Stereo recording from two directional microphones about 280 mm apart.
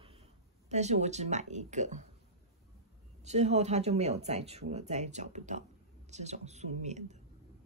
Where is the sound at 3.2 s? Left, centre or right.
Right.